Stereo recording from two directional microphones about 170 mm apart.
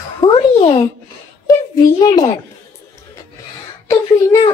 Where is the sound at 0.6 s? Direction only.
35° left (ahead or behind).